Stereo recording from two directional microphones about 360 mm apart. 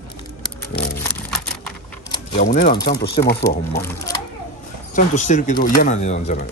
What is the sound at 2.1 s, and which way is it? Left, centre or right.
Speech, centre.